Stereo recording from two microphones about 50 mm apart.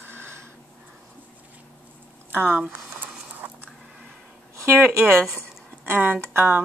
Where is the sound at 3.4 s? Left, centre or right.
Right.